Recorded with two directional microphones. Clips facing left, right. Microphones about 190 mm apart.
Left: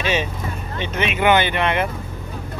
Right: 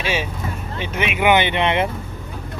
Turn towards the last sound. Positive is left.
turn(degrees=-20)  # may be behind; listen again after turning